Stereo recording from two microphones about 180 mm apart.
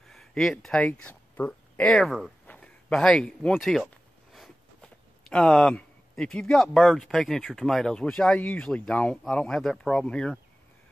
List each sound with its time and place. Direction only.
0.1 s speech: centre (ahead or behind)